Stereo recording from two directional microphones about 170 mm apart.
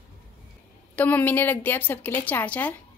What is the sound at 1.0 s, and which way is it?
A woman's voice, 10° left (ahead or behind).